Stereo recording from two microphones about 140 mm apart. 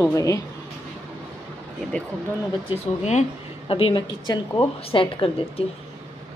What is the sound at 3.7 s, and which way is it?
A woman's voice, 40° left (ahead or behind).